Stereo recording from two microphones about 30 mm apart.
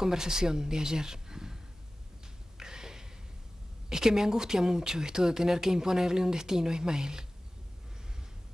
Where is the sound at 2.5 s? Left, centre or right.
Right.